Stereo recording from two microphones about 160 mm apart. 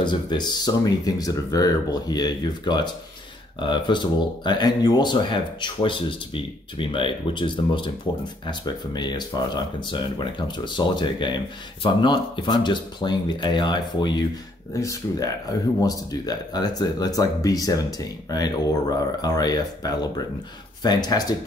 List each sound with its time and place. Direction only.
0.0 s speech: 30° left (ahead or behind)